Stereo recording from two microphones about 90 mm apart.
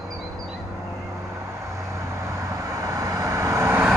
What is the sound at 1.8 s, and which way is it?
Vehicle, 35° right (ahead or behind).